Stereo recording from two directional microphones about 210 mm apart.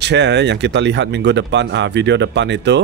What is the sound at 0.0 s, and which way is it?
Speech, 55° right (ahead or behind).